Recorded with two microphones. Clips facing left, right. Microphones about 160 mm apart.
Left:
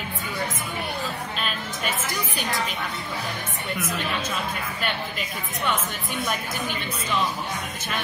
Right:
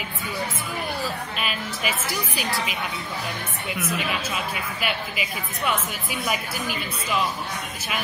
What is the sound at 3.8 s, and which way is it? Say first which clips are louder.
A woman's voice: right 2 dB; 10° right (ahead or behind).